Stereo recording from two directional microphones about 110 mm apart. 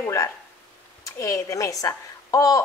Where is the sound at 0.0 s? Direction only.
30° left (ahead or behind).